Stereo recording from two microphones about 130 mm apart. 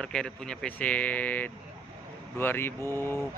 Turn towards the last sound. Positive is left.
turn(degrees=20)  # may be behind; listen again after turning